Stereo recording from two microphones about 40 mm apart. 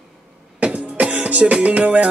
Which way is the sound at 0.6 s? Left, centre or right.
Right.